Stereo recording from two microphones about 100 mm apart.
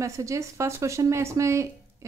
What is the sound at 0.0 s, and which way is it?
A woman's voice, 30° right (ahead or behind).